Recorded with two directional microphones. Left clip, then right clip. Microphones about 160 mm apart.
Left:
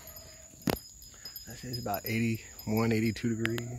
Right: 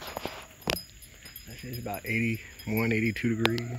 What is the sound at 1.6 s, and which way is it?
Speech, 25° left (ahead or behind).